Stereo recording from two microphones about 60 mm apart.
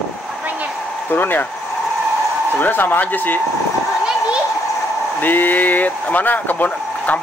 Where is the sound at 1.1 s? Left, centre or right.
Left.